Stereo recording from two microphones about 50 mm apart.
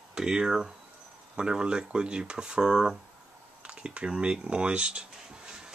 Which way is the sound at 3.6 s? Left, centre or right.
Right.